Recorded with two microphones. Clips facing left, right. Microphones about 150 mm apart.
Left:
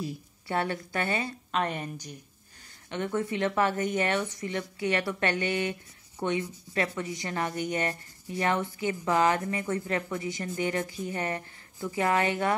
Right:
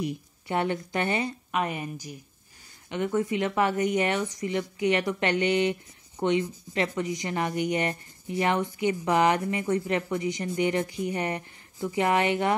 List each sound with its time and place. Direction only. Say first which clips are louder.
0.0 s a woman's voice: right 4 dB; 20° right (ahead or behind)